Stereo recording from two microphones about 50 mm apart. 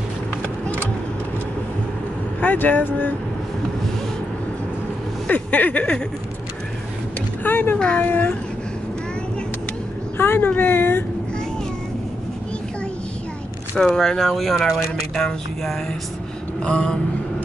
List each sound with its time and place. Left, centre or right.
2.4 s speech: left
5.3 s speech: left
7.4 s speech: left
7.8 s speech: left
10.1 s speech: left
13.7 s speech: centre
16.6 s speech: centre